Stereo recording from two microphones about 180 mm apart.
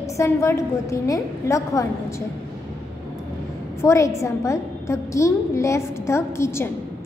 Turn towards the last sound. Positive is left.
turn(degrees=15)  # may be behind; listen again after turning